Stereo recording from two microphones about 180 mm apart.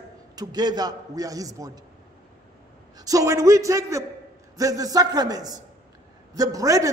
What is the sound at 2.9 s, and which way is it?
A man's voice, 20° right (ahead or behind).